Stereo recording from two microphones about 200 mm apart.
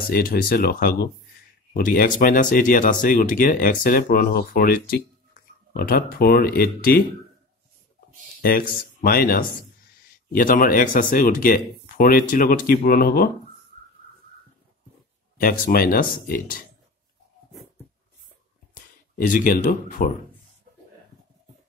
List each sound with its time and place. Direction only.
0.1 s speech: 45° left (ahead or behind)
8.4 s speech: 50° left (ahead or behind)
15.4 s speech: 45° left (ahead or behind)
18.8 s speech: 40° left (ahead or behind)